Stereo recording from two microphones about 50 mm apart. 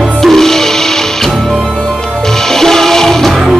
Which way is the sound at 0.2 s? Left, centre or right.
Centre.